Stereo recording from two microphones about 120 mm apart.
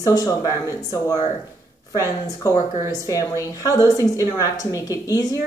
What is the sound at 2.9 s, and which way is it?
Speech, 30° left (ahead or behind).